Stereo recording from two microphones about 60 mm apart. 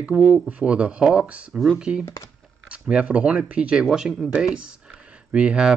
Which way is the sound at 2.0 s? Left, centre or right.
Left.